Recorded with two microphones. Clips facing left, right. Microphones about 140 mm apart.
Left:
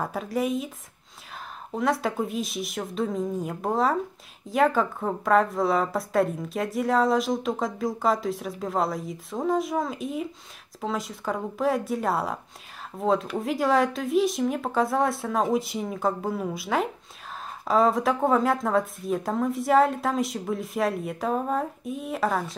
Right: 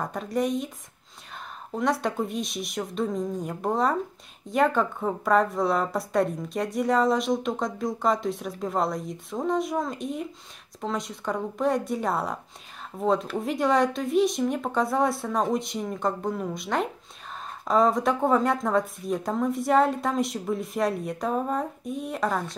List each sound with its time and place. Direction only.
0.0 s a woman's voice: 5° left (ahead or behind)
1.7 s a woman's voice: centre (ahead or behind)